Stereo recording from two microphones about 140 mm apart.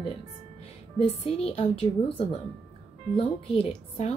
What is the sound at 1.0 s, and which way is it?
Speech, 45° left (ahead or behind).